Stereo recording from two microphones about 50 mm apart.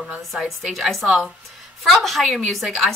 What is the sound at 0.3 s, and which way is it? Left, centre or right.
Speech, centre.